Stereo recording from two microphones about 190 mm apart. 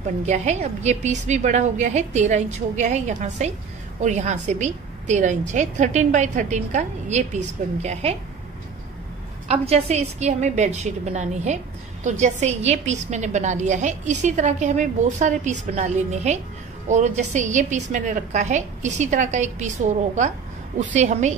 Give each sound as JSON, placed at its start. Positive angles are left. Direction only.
{"t": 0.2, "sound": "a woman's voice", "side_deg": -35}
{"t": 9.5, "sound": "a woman's voice", "side_deg": -35}
{"t": 20.7, "sound": "a woman's voice", "side_deg": -40}